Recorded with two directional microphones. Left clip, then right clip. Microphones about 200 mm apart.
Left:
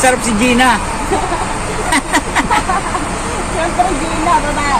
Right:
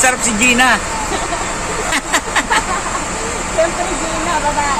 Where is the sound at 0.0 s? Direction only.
15° right (ahead or behind).